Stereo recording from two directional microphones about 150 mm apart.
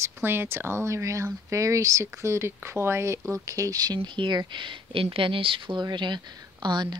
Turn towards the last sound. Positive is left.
turn(degrees=-30)  # may be behind; listen again after turning